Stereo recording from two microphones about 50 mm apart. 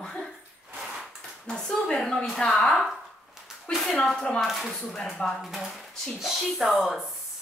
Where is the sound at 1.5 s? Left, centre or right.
Centre.